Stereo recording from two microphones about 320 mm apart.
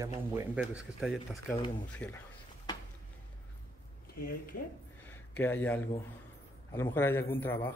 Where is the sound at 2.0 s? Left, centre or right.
Centre.